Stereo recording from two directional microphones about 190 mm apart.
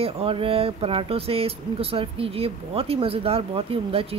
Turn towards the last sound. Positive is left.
turn(degrees=-30)  # may be behind; listen again after turning